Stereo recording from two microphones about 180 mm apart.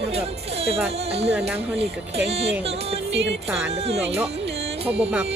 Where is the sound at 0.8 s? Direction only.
35° right (ahead or behind).